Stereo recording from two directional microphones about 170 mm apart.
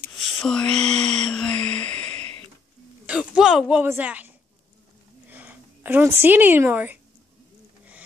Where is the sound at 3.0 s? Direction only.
5° right (ahead or behind).